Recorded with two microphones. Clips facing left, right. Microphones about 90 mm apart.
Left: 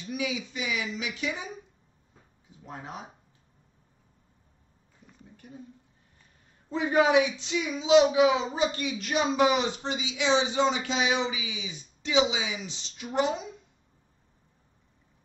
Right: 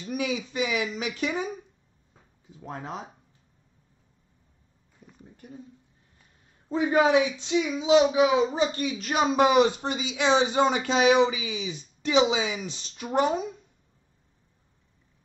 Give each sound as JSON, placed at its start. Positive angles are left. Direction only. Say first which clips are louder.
{"t": 0.1, "sound": "speech", "louder": "right 3 dB", "side_deg": -45}
{"t": 6.7, "sound": "a man's voice", "louder": "right 1 dB", "side_deg": -35}